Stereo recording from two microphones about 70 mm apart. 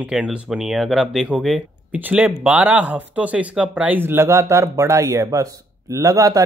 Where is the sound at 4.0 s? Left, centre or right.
Right.